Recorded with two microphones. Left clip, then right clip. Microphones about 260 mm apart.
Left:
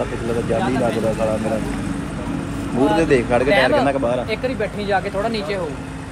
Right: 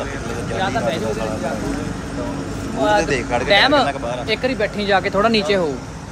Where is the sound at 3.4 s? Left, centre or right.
Right.